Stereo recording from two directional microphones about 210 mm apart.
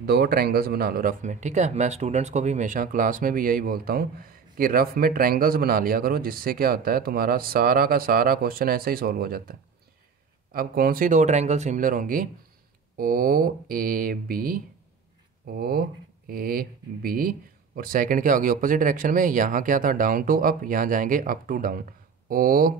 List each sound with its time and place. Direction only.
0.0 s speech: 45° right (ahead or behind)